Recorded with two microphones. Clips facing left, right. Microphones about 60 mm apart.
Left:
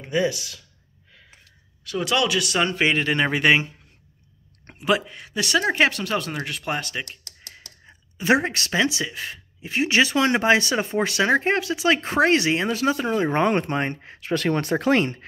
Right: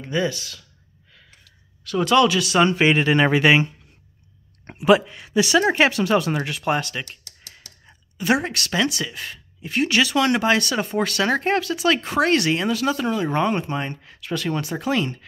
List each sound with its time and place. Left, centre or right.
0.0 s speech: centre
1.9 s speech: centre
4.6 s speech: centre
7.8 s speech: left
9.8 s speech: left
12.0 s speech: left
12.4 s speech: centre
12.6 s speech: left
14.4 s speech: left